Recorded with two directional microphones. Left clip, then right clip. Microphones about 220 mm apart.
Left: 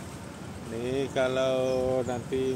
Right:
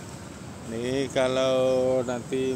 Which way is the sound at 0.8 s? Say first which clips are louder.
Right 3 dB; 40° right (ahead or behind).